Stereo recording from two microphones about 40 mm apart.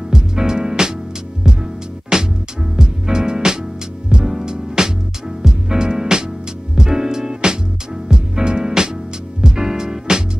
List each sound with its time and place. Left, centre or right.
0.1 s music: centre
2.1 s music: centre